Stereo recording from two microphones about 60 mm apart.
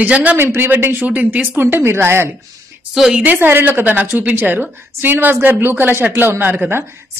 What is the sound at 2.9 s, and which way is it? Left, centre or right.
Speech, centre.